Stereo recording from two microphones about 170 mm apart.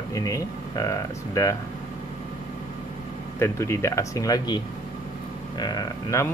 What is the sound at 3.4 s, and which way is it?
Speech, 15° left (ahead or behind).